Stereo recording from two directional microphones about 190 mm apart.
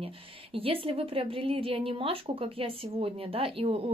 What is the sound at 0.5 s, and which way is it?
Speech, 30° right (ahead or behind).